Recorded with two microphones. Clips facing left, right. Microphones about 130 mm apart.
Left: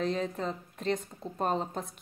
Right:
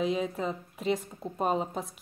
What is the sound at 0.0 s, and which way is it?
Speech, 5° right (ahead or behind).